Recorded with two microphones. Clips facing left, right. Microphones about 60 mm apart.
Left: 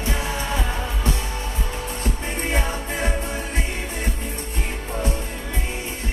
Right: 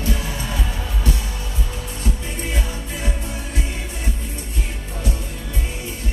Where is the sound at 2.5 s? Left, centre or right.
Left.